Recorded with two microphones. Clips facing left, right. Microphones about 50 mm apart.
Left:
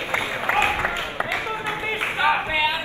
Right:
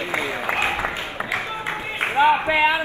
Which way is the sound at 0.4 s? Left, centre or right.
Left.